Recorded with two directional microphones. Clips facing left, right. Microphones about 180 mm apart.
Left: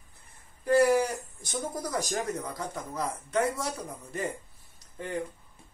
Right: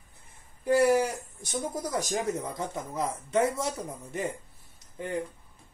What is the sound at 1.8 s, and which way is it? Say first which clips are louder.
Speech: right 1 dB; 20° right (ahead or behind).